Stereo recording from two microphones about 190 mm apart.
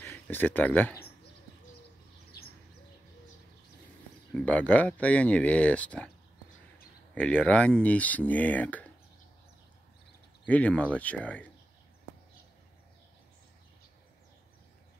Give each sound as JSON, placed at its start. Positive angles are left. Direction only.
{"t": 0.0, "sound": "speech", "side_deg": 10}
{"t": 2.3, "sound": "bird", "side_deg": 55}
{"t": 4.3, "sound": "speech", "side_deg": 5}
{"t": 7.2, "sound": "speech", "side_deg": 5}
{"t": 10.4, "sound": "speech", "side_deg": 5}